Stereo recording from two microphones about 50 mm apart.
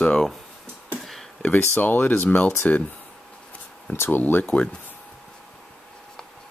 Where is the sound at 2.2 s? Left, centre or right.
Left.